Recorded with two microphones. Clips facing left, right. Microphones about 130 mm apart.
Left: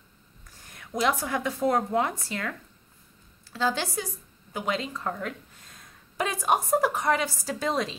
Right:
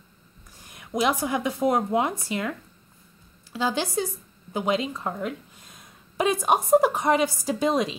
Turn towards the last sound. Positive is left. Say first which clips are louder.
# right 5 dB
turn(degrees=-15)  # may be behind; listen again after turning